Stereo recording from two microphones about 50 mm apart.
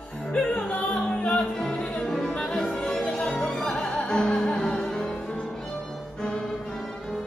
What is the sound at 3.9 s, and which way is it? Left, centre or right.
Music, left.